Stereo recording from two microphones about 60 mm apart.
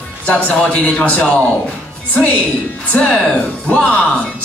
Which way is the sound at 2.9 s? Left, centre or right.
Centre.